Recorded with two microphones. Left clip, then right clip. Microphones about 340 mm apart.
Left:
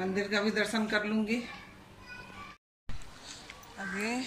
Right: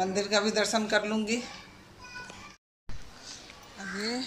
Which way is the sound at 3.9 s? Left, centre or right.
Centre.